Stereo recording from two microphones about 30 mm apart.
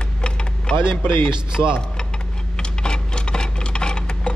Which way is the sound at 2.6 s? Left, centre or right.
Left.